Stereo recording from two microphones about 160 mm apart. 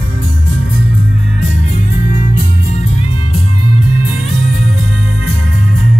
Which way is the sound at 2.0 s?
50° left (ahead or behind).